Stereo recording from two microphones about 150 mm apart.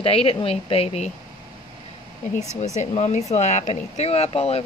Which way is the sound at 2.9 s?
50° left (ahead or behind).